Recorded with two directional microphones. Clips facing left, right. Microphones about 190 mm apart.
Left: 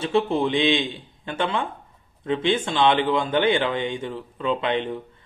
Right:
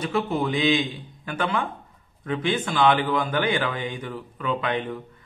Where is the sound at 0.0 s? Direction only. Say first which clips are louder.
Left 3 dB; 25° left (ahead or behind).